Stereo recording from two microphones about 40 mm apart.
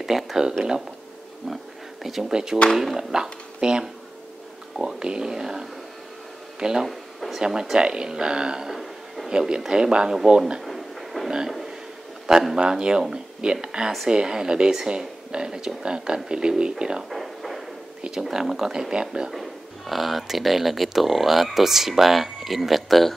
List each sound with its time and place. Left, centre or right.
0.0 s speech: centre
2.0 s speech: centre
2.3 s speech: centre
6.9 s a sound: centre
7.7 s speech: centre
8.7 s a sound: centre
9.5 s speech: centre
10.6 s drawer open or close: centre
11.2 s speech: centre
12.5 s speech: centre
17.1 s a sound: centre
18.2 s speech: centre
19.9 s speech: centre